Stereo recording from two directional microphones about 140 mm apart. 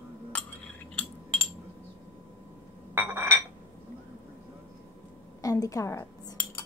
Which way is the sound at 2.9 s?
15° right (ahead or behind).